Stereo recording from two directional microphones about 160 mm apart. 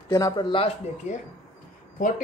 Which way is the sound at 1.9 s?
55° left (ahead or behind).